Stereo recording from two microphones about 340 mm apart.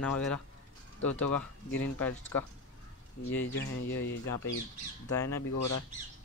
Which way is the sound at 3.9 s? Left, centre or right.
Left.